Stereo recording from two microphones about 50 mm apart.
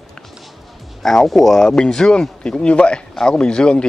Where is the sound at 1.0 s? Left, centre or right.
Centre.